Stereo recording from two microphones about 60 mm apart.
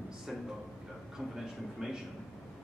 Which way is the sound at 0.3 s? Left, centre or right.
Centre.